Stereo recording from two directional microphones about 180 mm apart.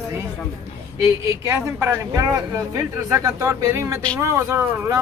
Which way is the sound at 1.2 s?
15° right (ahead or behind).